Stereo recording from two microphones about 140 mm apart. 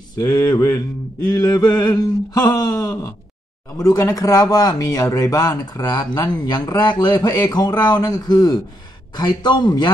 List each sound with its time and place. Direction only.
0.1 s speech: 25° left (ahead or behind)